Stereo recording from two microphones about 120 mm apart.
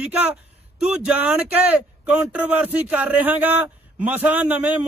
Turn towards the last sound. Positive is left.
turn(degrees=-15)  # may be behind; listen again after turning